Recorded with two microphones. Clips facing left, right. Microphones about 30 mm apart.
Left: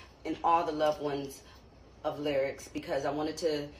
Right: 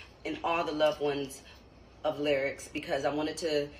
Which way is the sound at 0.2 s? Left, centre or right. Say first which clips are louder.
Left 3 dB; right.